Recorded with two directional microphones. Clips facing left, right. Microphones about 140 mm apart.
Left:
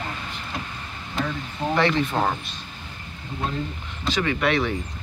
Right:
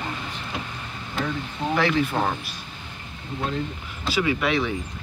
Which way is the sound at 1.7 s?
Centre (ahead or behind).